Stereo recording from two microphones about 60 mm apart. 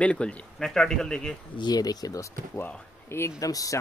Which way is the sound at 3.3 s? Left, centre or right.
Left.